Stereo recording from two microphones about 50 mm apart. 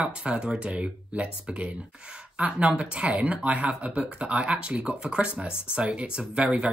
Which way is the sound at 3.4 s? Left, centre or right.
Right.